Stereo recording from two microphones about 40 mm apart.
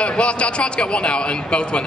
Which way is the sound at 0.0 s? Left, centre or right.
Left.